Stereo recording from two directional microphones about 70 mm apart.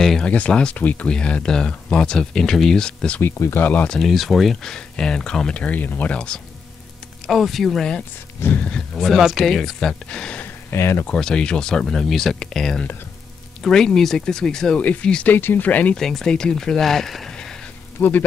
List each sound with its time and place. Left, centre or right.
0.0 s speech: centre
3.2 s speech: left
3.6 s speech: left
3.9 s speech: centre
7.2 s speech: centre
8.4 s speech: left
8.6 s speech: centre
10.4 s a sound: left
11.1 s speech: centre
14.8 s speech: left
16.0 s speech: centre
18.0 s speech: left